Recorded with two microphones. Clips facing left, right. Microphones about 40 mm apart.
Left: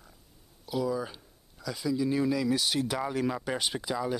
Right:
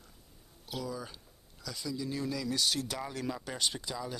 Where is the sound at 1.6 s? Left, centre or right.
Centre.